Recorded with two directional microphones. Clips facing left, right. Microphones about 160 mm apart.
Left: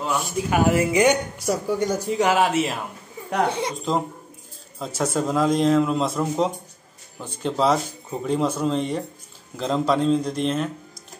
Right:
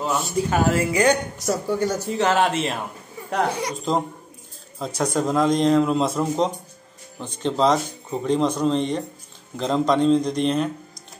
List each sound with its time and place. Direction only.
0.2 s speech: 15° left (ahead or behind)
3.9 s a man's voice: centre (ahead or behind)